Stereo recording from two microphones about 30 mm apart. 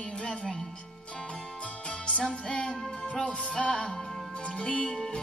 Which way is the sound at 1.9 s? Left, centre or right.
Left.